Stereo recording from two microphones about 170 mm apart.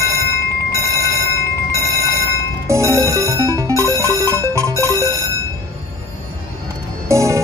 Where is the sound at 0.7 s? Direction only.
20° left (ahead or behind).